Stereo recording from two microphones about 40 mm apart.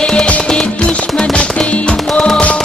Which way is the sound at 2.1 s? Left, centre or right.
Centre.